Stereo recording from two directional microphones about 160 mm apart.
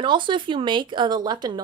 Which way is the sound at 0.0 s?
30° right (ahead or behind).